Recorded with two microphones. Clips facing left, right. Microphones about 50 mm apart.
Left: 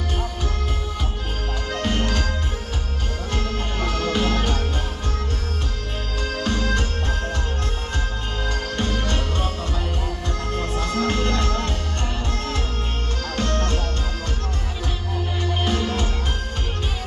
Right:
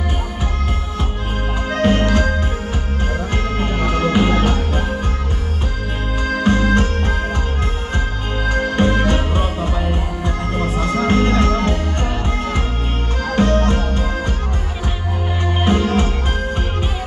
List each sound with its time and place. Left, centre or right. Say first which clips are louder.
1.7 s music: right 9 dB; centre
3.5 s music: right 6 dB; right
6.2 s music: right 8 dB; centre
8.5 s music: right 10 dB; centre
15.4 s music: right 7 dB; centre